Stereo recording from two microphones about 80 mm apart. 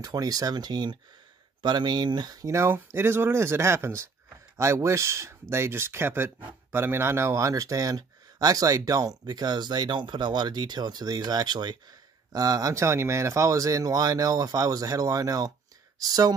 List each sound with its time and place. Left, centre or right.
0.0 s speech: right
2.4 s speech: right
12.3 s speech: right